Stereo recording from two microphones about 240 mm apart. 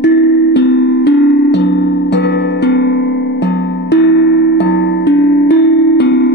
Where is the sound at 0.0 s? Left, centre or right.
Left.